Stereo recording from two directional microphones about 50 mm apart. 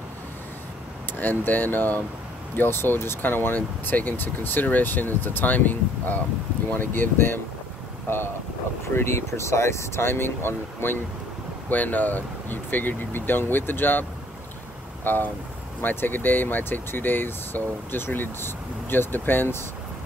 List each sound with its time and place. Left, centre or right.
1.2 s speech: left
11.7 s speech: left
15.0 s speech: left